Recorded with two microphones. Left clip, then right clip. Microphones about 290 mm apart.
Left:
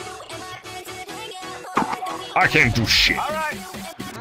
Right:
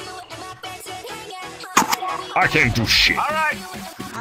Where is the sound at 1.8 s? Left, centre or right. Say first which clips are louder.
Right 5 dB; right.